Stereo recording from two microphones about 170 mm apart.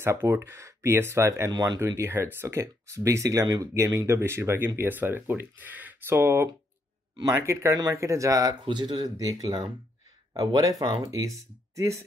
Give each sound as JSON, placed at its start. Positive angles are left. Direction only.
{"t": 0.0, "sound": "speech", "side_deg": -15}